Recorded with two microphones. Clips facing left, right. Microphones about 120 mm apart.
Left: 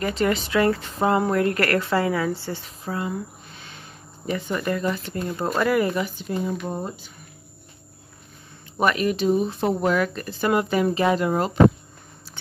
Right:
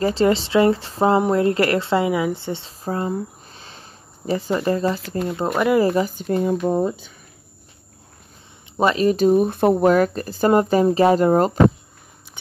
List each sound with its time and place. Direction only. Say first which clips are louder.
0.0 s speech: right 5 dB; 30° right (ahead or behind)
2.8 s a sound: right 5 dB; 35° right (ahead or behind)
4.3 s speech: right 5 dB; 35° right (ahead or behind)
5.8 s speech: right 5 dB; 35° right (ahead or behind)
6.2 s speech: right 6 dB; 55° right (ahead or behind)
8.7 s speech: right 4 dB; 25° right (ahead or behind)
9.1 s speech: right 5 dB; 45° right (ahead or behind)